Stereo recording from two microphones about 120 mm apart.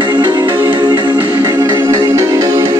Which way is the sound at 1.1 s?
25° right (ahead or behind).